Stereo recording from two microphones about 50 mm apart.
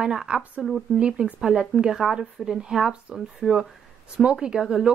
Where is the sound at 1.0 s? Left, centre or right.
Centre.